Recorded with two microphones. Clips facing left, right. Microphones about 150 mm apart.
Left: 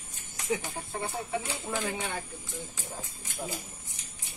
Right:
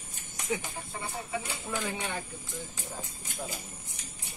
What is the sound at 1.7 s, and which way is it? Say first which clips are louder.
Speech: left 1 dB; 10° left (ahead or behind).